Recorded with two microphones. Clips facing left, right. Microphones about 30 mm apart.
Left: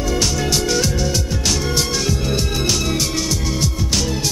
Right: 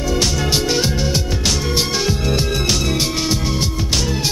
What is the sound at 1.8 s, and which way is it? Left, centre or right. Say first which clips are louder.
Music: right 1 dB; right.